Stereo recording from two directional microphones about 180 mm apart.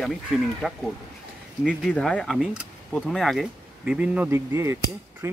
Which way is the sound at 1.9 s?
5° left (ahead or behind).